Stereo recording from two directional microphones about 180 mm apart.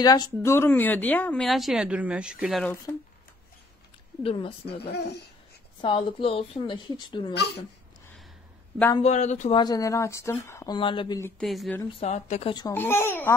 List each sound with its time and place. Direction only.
0.0 s speech: 20° left (ahead or behind); by 2.7 s centre (ahead or behind)
4.2 s speech: 30° left (ahead or behind)
4.6 s speech: 65° left (ahead or behind)
5.8 s a woman's voice: 25° left (ahead or behind)
8.9 s speech: 40° left (ahead or behind)
9.6 s speech: 20° left (ahead or behind)
11.2 s speech: centre (ahead or behind)
12.0 s speech: 35° left (ahead or behind)
12.7 s speech: 10° left (ahead or behind)